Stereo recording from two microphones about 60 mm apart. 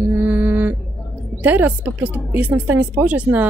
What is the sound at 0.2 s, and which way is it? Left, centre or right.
Mantra, right.